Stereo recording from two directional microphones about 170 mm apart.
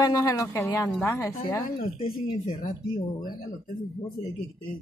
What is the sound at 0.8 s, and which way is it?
Speech, 5° left (ahead or behind).